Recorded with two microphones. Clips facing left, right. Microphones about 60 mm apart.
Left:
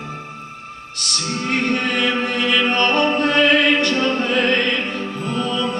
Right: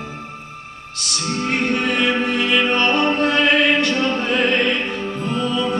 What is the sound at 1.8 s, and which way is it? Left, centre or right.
Music, centre.